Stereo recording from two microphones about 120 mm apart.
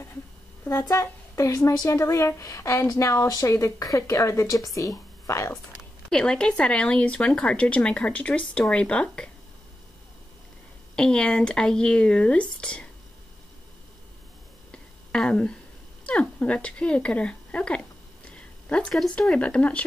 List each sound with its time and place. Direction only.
0.7 s a woman's voice: 25° left (ahead or behind)
6.0 s speech: 5° left (ahead or behind)
11.0 s speech: 5° left (ahead or behind)
14.7 s a sound: 5° left (ahead or behind)
16.1 s speech: 10° left (ahead or behind)